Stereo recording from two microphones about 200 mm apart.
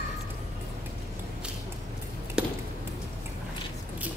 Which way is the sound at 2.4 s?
5° right (ahead or behind).